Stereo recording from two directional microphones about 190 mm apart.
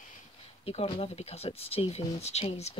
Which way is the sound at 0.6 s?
30° left (ahead or behind).